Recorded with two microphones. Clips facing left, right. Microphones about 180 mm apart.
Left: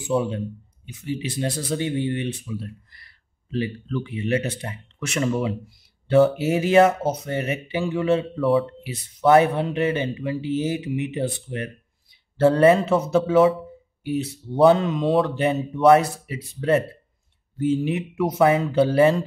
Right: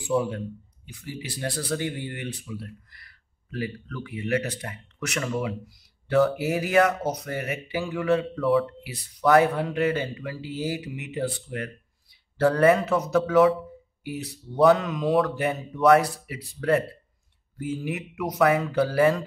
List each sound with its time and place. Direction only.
0.0 s speech: 25° left (ahead or behind)